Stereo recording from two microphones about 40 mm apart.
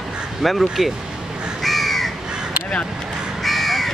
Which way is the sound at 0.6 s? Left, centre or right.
Centre.